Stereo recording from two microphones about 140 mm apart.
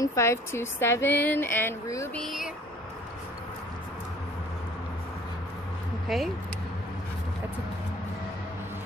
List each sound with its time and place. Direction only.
0.0 s speech: 20° left (ahead or behind)
2.1 s a sound: centre (ahead or behind)
6.0 s speech: centre (ahead or behind)